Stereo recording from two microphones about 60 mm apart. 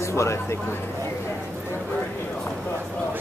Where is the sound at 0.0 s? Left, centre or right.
Left.